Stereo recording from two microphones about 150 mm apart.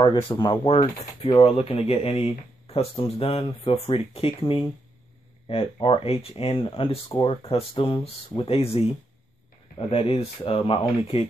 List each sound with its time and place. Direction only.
0.0 s speech: 35° left (ahead or behind)